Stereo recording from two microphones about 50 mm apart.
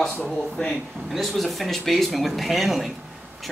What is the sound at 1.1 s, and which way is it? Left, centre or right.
Speech, centre.